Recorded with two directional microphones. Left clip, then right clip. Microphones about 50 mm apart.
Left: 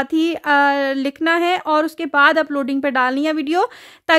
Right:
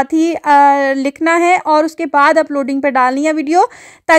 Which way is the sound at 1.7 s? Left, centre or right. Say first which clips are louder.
Right 6 dB; centre.